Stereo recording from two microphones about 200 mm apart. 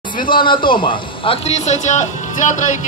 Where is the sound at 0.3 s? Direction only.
25° left (ahead or behind).